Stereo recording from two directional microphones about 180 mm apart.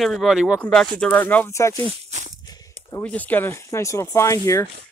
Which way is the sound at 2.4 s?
20° left (ahead or behind).